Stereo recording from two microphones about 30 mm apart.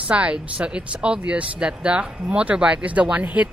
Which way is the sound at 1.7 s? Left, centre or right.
Right.